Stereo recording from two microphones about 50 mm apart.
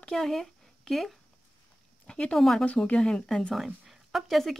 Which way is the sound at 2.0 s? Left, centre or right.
Centre.